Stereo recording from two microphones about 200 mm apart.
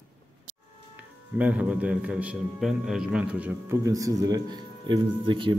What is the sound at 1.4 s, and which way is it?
A man's voice, 5° right (ahead or behind).